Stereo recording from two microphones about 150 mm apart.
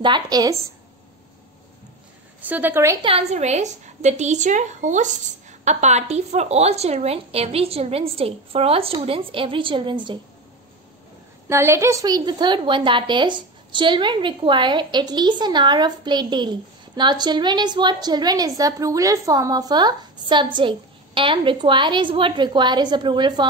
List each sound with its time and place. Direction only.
0.0 s a woman's voice: 30° right (ahead or behind)
2.4 s a woman's voice: 10° right (ahead or behind)
3.0 s a woman's voice: 40° right (ahead or behind)
11.4 s a woman's voice: 20° right (ahead or behind)